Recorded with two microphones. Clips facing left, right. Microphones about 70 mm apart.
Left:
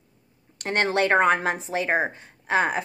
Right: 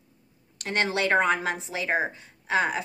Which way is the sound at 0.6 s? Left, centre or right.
Left.